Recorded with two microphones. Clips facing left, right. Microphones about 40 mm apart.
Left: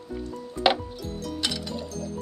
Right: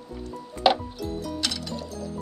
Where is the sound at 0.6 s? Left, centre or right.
Centre.